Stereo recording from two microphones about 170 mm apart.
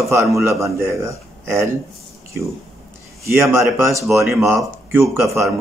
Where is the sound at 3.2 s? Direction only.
15° right (ahead or behind).